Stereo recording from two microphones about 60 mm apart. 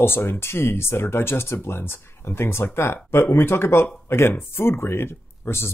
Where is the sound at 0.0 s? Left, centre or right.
Left.